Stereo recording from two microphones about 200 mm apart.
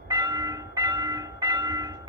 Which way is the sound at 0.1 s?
20° right (ahead or behind).